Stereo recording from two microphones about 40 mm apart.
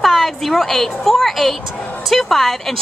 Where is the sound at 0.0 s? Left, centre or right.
Centre.